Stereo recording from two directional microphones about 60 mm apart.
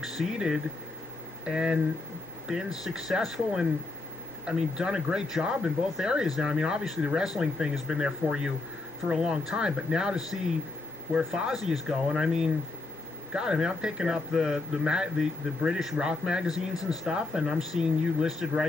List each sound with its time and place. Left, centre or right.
0.0 s a man's voice: centre